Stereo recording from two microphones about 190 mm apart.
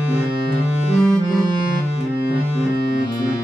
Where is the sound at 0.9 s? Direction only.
5° left (ahead or behind).